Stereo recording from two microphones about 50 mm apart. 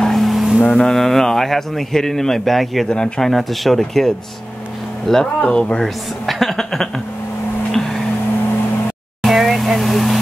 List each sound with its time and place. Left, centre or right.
0.0 s boat: centre
0.7 s speech: centre
2.9 s speech: centre
3.3 s speech: centre
5.4 s speech: left
5.8 s speech: centre
7.7 s a sound: centre
9.2 s vehicle: centre